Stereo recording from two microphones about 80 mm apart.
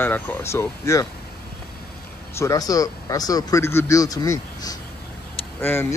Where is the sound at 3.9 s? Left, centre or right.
Left.